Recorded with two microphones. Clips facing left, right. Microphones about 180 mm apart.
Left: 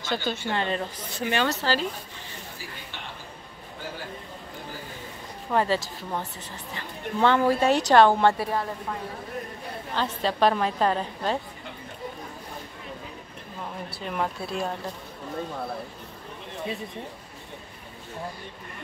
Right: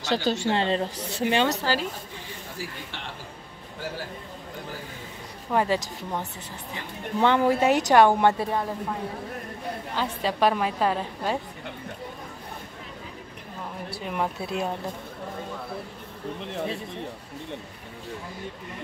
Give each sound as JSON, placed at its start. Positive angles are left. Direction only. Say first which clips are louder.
{"t": 0.1, "sound": "a woman's voice", "louder": "right 4 dB", "side_deg": -40}
{"t": 0.5, "sound": "speech", "louder": "right 2 dB", "side_deg": -25}
{"t": 5.5, "sound": "a woman's voice", "louder": "even", "side_deg": -10}
{"t": 9.9, "sound": "a woman's voice", "louder": "left 1 dB", "side_deg": -10}
{"t": 13.8, "sound": "a woman's voice", "louder": "right 1 dB", "side_deg": -10}